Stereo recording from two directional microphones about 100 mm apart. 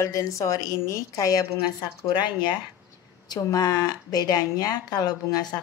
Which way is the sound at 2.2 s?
50° left (ahead or behind).